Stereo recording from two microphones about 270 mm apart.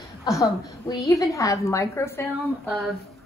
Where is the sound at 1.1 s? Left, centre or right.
Centre.